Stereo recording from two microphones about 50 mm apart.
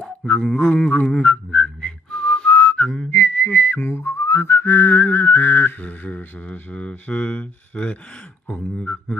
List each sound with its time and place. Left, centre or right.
0.0 s a sound: centre
0.6 s speech: left
1.0 s music: centre
1.3 s whistling: left
3.1 s whistling: left
4.2 s whistling: left
5.9 s speech: left